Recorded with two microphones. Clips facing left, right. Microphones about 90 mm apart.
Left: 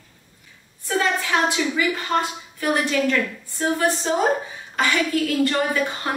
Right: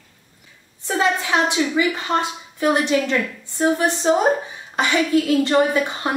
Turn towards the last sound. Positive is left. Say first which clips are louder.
# right 3 dB
turn(degrees=-20)  # may be behind; listen again after turning